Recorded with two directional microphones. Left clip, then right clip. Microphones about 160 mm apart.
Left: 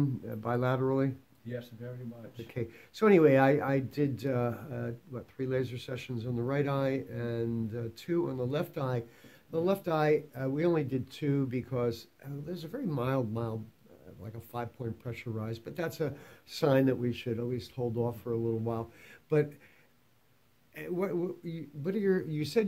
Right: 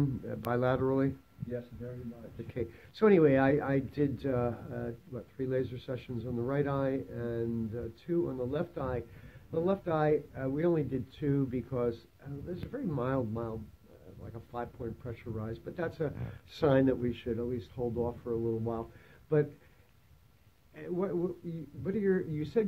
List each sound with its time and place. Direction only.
0.0 s speech: 15° left (ahead or behind)
2.5 s speech: 15° left (ahead or behind)
20.7 s speech: 15° left (ahead or behind)